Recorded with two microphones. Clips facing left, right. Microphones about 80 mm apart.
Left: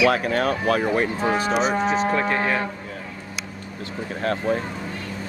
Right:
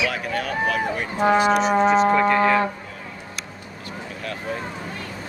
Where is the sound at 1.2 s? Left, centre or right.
Right.